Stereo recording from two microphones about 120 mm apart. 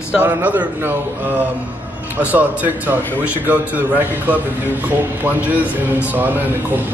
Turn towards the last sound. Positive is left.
turn(degrees=-15)  # may be behind; listen again after turning